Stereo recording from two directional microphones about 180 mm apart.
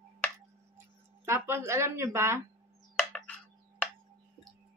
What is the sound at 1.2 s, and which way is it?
A woman's voice, 15° right (ahead or behind).